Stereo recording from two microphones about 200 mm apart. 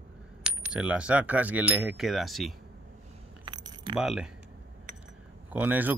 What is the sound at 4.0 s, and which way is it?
Speech, 5° right (ahead or behind).